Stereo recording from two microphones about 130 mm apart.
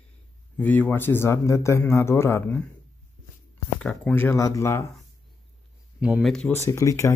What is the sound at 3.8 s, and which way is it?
Speech, 10° left (ahead or behind).